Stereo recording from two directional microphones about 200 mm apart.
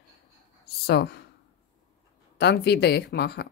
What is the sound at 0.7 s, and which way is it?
Speech, 55° left (ahead or behind).